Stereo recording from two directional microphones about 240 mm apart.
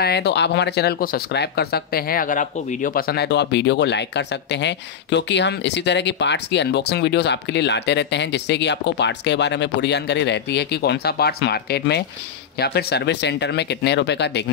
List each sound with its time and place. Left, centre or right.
0.0 s speech: left